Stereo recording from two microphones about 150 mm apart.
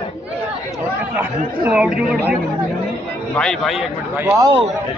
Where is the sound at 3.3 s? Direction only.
5° left (ahead or behind).